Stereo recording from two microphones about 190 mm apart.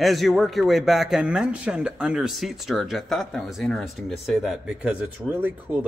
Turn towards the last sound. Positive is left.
turn(degrees=-10)  # may be behind; listen again after turning